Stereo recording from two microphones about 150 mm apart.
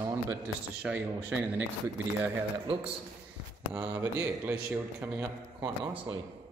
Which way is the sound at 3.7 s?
10° right (ahead or behind).